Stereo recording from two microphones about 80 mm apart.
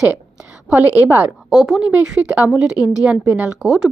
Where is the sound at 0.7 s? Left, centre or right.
Right.